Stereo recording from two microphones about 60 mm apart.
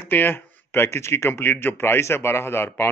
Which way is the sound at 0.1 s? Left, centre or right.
Left.